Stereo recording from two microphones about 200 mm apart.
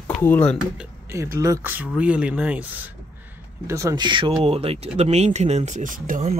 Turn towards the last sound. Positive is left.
turn(degrees=-40)  # may be behind; listen again after turning